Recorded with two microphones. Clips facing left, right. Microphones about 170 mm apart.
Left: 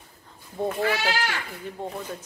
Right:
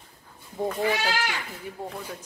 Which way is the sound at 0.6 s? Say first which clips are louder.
Left 1 dB; 5° left (ahead or behind).